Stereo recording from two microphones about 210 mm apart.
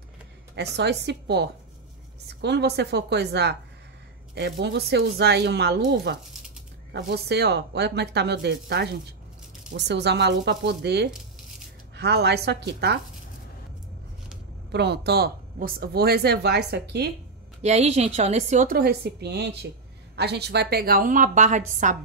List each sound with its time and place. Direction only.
0.6 s speech: 55° right (ahead or behind)
14.7 s speech: 50° right (ahead or behind)
17.6 s a woman's voice: 30° right (ahead or behind)